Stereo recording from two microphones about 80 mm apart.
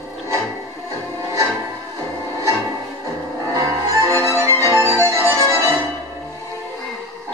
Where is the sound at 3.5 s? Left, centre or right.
Right.